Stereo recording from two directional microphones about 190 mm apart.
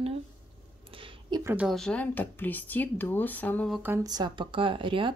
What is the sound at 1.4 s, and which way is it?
Speech, 5° right (ahead or behind).